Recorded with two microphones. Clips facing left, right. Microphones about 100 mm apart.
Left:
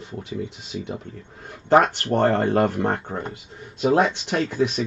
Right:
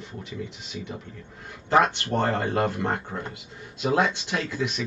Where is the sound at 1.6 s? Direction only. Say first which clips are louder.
Left 4 dB; 40° left (ahead or behind).